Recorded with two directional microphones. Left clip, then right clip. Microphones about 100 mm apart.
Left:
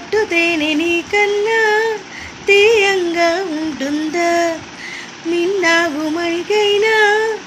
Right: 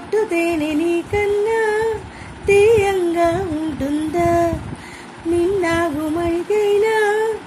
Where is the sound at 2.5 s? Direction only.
15° right (ahead or behind).